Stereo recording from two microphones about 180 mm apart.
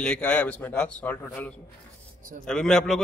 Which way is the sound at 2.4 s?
5° left (ahead or behind).